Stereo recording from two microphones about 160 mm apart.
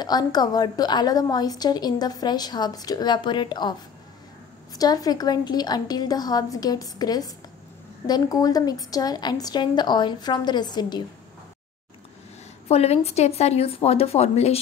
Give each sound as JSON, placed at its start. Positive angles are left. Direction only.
{"t": 0.0, "sound": "a woman's voice", "side_deg": 25}
{"t": 4.7, "sound": "a woman's voice", "side_deg": 25}
{"t": 12.6, "sound": "a woman's voice", "side_deg": 40}